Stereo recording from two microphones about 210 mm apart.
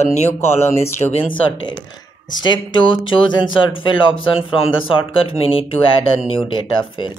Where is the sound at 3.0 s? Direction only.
70° left (ahead or behind).